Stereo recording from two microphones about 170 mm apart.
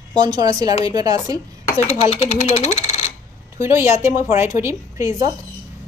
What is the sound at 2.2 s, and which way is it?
Speech, 40° left (ahead or behind).